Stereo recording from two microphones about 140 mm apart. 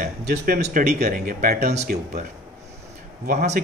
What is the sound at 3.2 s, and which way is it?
Speech, 60° right (ahead or behind).